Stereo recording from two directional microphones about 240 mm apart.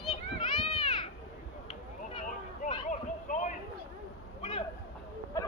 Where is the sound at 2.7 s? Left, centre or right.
Left.